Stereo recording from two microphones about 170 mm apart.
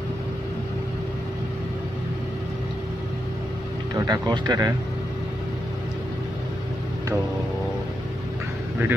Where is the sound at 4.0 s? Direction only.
25° right (ahead or behind).